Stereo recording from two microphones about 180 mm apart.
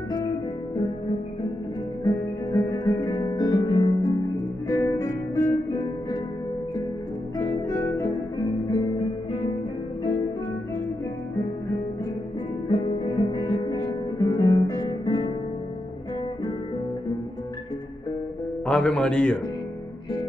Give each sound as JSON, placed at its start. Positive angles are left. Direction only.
{"t": 2.0, "sound": "guitar", "side_deg": 20}
{"t": 4.6, "sound": "music", "side_deg": 20}
{"t": 7.3, "sound": "guitar", "side_deg": 20}
{"t": 12.6, "sound": "music", "side_deg": 25}
{"t": 18.7, "sound": "music", "side_deg": 5}